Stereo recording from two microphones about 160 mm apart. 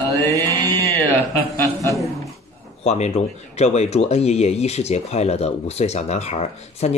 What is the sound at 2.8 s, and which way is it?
Speech, 45° left (ahead or behind).